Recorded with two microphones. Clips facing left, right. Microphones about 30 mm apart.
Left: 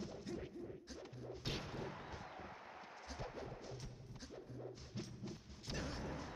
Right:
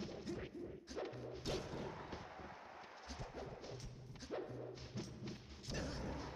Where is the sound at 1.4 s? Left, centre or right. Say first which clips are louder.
Right 2 dB; centre.